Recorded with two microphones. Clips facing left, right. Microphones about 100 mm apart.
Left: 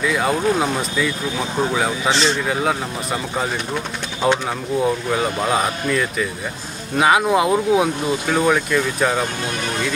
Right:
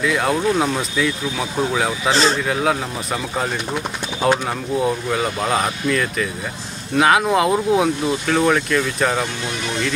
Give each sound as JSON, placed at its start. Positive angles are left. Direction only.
{"t": 0.0, "sound": "speech", "side_deg": 0}